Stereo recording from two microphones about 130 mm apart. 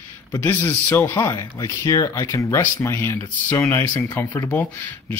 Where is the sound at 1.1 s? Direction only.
30° left (ahead or behind).